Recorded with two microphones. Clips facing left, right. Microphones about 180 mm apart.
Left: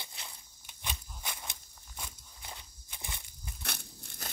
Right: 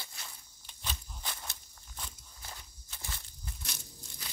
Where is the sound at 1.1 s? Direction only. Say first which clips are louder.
Even; 10° left (ahead or behind).